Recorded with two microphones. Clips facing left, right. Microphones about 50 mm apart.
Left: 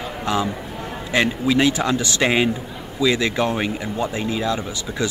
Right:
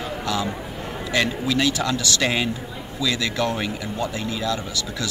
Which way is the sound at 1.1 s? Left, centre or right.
Left.